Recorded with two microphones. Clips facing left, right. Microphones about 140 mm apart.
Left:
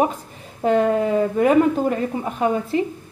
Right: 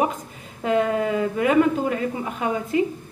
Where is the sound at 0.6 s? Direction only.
35° left (ahead or behind).